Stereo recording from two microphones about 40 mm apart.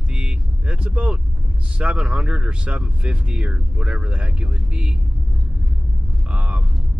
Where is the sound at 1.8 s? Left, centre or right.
Right.